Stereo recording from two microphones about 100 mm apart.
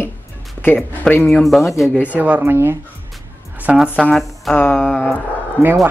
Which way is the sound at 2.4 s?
25° right (ahead or behind).